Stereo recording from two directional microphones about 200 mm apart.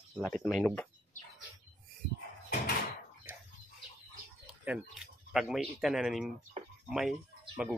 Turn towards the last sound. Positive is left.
turn(degrees=-5)  # may be behind; listen again after turning